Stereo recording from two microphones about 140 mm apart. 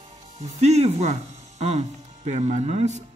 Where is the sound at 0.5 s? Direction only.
50° right (ahead or behind).